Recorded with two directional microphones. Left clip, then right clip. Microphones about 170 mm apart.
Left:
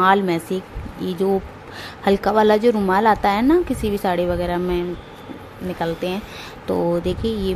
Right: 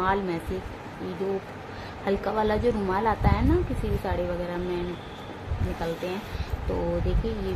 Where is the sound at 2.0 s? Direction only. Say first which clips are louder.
Left 10 dB; 60° left (ahead or behind).